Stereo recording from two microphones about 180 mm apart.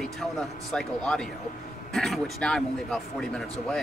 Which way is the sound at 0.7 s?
5° left (ahead or behind).